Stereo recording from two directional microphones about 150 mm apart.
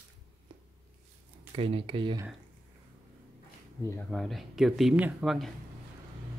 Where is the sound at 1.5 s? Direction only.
40° right (ahead or behind).